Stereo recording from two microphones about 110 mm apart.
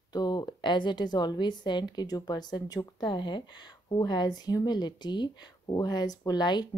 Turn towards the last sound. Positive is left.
turn(degrees=40)  # may be behind; listen again after turning